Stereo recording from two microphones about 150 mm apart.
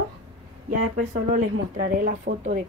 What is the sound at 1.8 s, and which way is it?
Speech, 65° right (ahead or behind).